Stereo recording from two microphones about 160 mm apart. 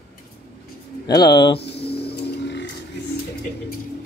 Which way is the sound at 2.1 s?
90° left.